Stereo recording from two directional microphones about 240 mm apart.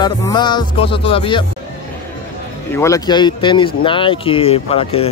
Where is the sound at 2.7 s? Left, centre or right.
Centre.